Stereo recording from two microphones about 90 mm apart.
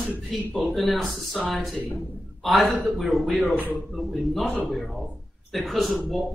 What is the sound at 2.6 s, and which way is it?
Speech, 20° right (ahead or behind).